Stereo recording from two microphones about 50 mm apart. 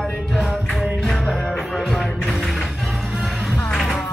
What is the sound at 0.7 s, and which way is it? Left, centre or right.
Music, centre.